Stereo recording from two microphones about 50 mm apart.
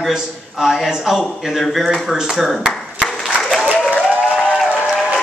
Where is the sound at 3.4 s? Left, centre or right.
Centre.